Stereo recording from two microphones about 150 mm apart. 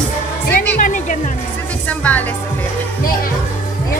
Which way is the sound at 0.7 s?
60° left (ahead or behind).